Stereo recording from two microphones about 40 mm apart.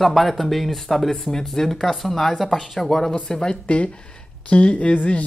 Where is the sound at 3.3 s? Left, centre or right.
Left.